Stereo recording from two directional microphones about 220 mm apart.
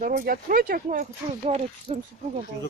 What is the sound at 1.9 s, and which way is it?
Speech, 25° right (ahead or behind).